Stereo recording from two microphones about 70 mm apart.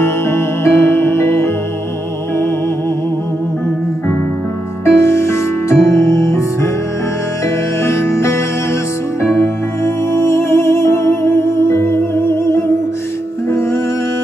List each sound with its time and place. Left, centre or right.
0.0 s music: left
4.8 s music: left
7.8 s music: left
10.1 s music: left